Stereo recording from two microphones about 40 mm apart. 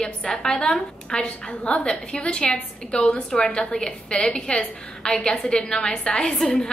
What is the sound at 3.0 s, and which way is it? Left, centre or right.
A woman's voice, centre.